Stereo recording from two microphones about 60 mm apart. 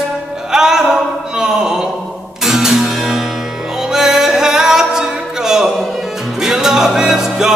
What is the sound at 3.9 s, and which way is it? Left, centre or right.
A capella, centre.